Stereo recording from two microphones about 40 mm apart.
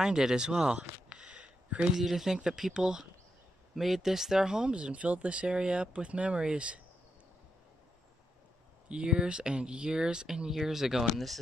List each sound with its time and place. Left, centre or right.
0.0 s speech: centre
1.2 s a sound: right
2.0 s speech: centre
4.9 s speech: right
8.8 s speech: right; by 11.3 s centre